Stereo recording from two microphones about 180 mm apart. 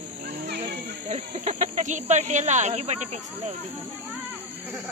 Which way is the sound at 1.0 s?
40° right (ahead or behind).